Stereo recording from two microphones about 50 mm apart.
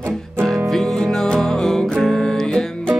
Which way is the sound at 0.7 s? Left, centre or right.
Centre.